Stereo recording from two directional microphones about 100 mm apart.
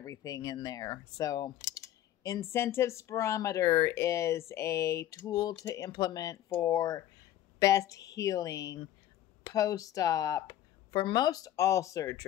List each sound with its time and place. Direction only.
0.0 s speech: 35° left (ahead or behind)